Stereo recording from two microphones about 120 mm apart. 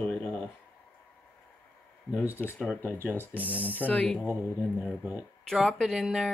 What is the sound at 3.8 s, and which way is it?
Speech, 10° left (ahead or behind).